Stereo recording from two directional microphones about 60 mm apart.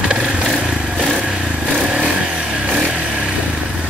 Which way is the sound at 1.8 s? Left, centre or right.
Centre.